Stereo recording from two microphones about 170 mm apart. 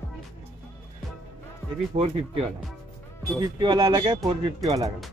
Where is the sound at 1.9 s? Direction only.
40° right (ahead or behind).